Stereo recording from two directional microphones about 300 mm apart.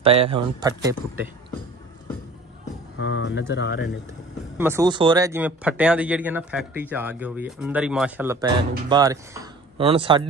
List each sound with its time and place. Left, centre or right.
0.0 s speech: centre
3.0 s speech: left
4.6 s speech: centre